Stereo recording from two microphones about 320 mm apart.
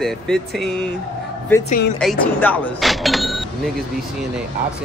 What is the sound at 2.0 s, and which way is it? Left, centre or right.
Speech, centre.